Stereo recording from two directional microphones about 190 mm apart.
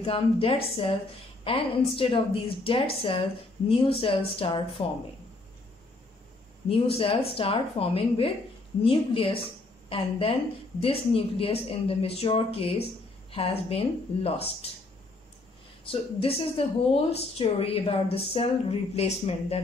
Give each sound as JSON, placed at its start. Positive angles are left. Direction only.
{"t": 0.0, "sound": "a woman's voice", "side_deg": 30}
{"t": 6.7, "sound": "a woman's voice", "side_deg": 30}
{"t": 15.8, "sound": "speech", "side_deg": 30}